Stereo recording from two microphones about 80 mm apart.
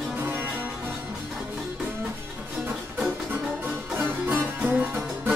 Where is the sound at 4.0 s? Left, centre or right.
Right.